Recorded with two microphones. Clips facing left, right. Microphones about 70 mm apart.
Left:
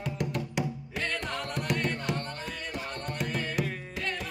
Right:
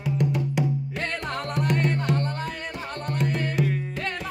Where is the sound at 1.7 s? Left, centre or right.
Centre.